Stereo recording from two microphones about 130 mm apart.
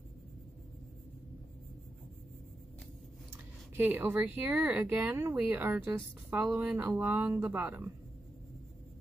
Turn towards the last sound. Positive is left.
turn(degrees=-15)  # may be behind; listen again after turning